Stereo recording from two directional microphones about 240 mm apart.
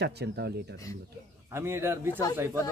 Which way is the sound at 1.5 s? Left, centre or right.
Centre.